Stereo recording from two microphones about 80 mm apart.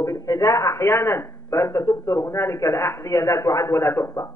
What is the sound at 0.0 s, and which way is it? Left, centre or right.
A man's voice, left.